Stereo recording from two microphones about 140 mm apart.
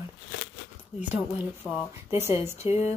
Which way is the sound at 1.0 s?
10° right (ahead or behind).